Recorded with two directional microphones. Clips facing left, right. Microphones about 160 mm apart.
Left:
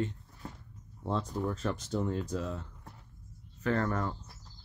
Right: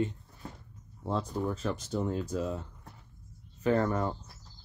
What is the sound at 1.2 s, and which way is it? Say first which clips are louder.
Speech: right 3 dB; 5° right (ahead or behind).